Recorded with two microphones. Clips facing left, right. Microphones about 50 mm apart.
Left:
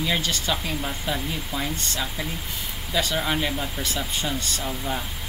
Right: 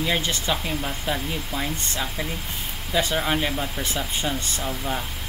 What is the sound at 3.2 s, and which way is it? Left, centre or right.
Speech, centre.